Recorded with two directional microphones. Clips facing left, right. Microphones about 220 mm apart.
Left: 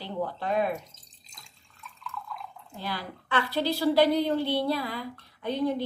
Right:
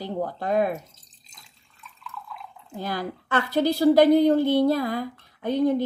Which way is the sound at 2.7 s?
45° right (ahead or behind).